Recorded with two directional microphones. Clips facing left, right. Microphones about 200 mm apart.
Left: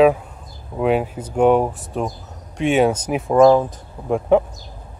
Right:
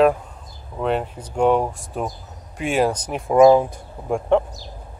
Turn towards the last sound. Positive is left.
turn(degrees=5)  # may be behind; listen again after turning